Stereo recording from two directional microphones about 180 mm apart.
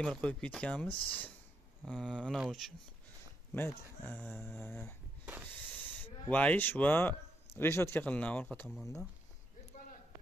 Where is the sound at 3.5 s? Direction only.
10° left (ahead or behind).